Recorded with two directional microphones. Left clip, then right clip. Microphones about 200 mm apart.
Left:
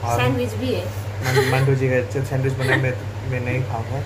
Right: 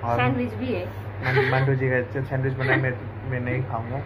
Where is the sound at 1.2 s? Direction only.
25° left (ahead or behind).